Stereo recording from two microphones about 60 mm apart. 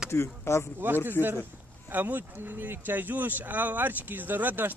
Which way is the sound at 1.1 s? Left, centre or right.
Right.